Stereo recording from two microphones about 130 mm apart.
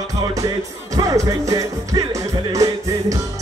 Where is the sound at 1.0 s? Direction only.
25° right (ahead or behind).